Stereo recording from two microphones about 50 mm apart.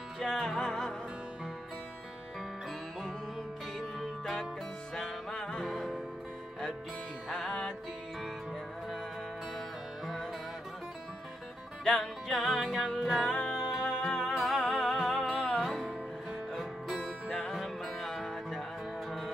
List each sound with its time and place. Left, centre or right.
0.2 s music: centre
4.0 s music: centre
7.2 s music: centre
11.8 s music: centre
13.2 s music: centre